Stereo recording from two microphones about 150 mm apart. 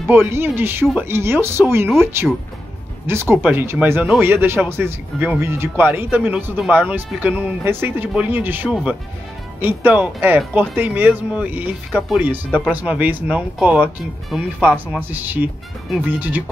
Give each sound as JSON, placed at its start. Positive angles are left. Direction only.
{"t": 0.1, "sound": "speech", "side_deg": -15}
{"t": 12.4, "sound": "speech", "side_deg": 10}
{"t": 12.7, "sound": "speech", "side_deg": -10}
{"t": 14.9, "sound": "speech", "side_deg": -10}